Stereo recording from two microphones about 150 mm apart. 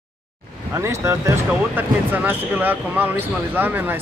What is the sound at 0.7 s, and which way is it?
Speech, 20° right (ahead or behind).